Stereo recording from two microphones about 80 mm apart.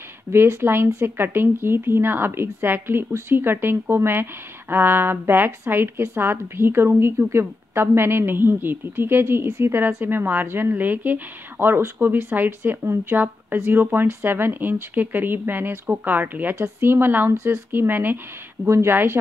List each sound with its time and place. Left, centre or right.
0.3 s speech: right